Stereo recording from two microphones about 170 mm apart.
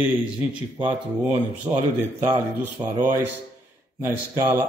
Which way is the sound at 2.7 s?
20° right (ahead or behind).